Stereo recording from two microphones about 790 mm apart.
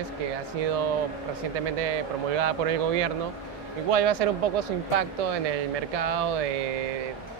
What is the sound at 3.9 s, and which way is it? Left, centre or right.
Speech, right.